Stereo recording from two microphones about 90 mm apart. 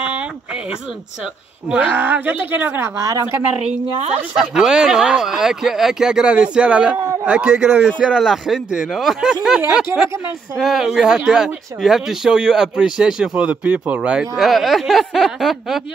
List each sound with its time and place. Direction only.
0.0 s a sound: 10° right (ahead or behind)
1.7 s speech: 15° right (ahead or behind)
3.0 s a woman's voice: 40° right (ahead or behind)
4.4 s speech: 5° right (ahead or behind)
14.3 s speech: centre (ahead or behind)